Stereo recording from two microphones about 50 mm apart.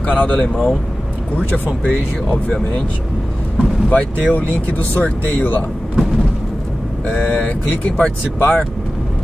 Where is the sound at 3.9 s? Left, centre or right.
Left.